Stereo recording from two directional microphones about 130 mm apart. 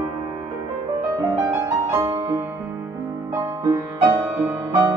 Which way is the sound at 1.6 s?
20° right (ahead or behind).